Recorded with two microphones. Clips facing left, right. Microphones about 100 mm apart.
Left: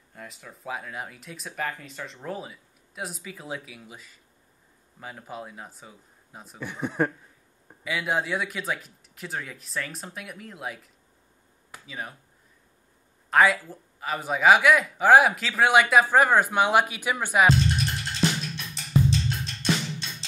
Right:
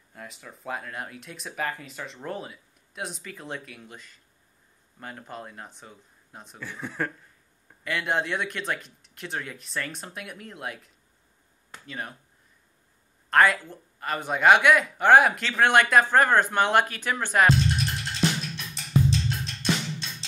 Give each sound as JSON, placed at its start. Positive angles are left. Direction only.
{"t": 0.1, "sound": "speech", "side_deg": 0}
{"t": 6.6, "sound": "speech", "side_deg": 20}
{"t": 7.8, "sound": "speech", "side_deg": 5}
{"t": 13.3, "sound": "speech", "side_deg": 5}
{"t": 13.7, "sound": "a sound", "side_deg": 0}